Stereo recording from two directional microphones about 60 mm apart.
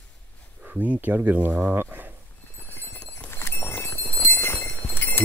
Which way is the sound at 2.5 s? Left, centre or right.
Left.